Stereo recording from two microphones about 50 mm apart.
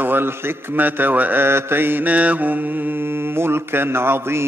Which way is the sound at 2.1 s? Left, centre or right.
Right.